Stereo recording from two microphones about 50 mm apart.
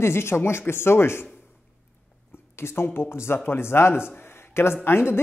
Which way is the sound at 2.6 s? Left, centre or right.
Left.